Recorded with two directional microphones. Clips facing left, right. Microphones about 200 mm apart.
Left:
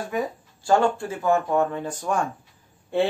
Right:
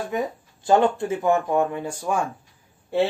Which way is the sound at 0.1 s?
20° right (ahead or behind).